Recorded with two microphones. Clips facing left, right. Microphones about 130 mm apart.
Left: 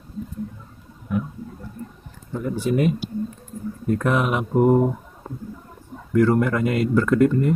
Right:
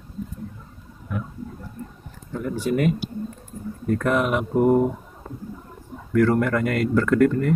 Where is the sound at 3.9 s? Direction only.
20° left (ahead or behind).